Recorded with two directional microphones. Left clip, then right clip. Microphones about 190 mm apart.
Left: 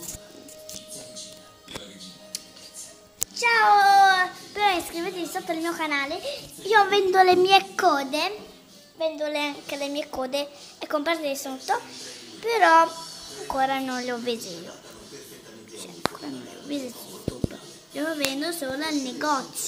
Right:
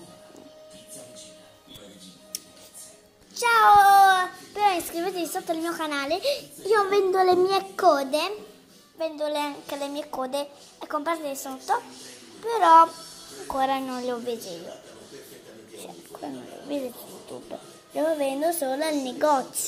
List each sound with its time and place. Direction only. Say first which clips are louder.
3.3 s child singing: right 2 dB; 20° right (ahead or behind)
4.6 s a sound: even; 5° right (ahead or behind)
5.5 s a woman's voice: left 3 dB; 5° right (ahead or behind)
6.0 s a child's voice: right 5 dB; 25° right (ahead or behind)
6.6 s a woman's voice: left 3 dB; 5° left (ahead or behind)
13.6 s a woman's voice: even; 10° right (ahead or behind)
14.0 s a woman's voice: left 1 dB; 20° left (ahead or behind)
15.8 s a sound: left 8 dB; 5° left (ahead or behind)
17.5 s music: right 2 dB; centre (ahead or behind)
18.4 s a woman's voice: right 4 dB; 15° right (ahead or behind)
19.0 s a woman's voice: right 5 dB; 5° right (ahead or behind)